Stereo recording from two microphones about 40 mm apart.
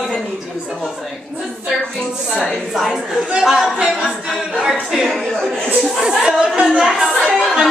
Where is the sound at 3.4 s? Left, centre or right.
Centre.